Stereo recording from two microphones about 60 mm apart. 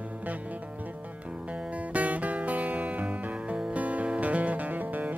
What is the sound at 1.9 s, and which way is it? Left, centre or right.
Music, right.